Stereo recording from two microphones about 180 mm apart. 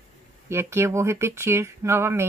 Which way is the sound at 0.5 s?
15° right (ahead or behind).